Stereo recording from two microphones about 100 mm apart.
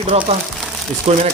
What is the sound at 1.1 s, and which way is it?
Speech, 90° right.